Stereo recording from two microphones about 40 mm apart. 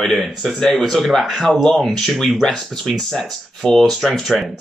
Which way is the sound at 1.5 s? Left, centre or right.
Centre.